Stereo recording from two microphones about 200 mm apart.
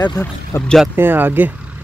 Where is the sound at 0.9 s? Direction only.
10° right (ahead or behind).